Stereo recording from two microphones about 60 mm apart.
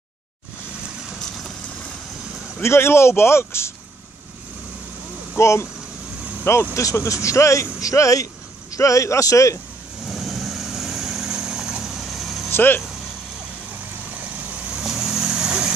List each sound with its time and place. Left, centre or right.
2.6 s speech: left
5.3 s speech: left
6.7 s speech: left
10.0 s vehicle: centre
12.4 s speech: left
14.8 s vehicle: centre